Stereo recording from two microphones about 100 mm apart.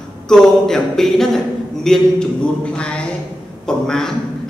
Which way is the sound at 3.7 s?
5° left (ahead or behind).